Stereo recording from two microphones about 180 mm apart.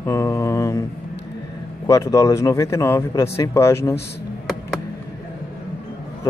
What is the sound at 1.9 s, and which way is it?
Speech, 15° left (ahead or behind).